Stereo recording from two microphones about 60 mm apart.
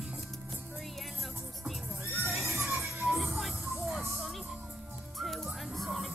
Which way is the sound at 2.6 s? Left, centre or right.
Right.